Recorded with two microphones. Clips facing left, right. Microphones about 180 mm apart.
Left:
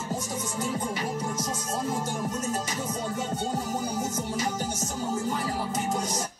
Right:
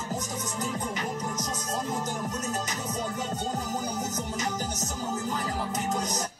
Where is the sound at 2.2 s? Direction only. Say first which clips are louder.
Left 2 dB; 25° left (ahead or behind).